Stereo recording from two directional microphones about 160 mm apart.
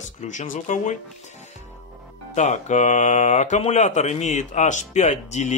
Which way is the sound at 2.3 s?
45° left (ahead or behind).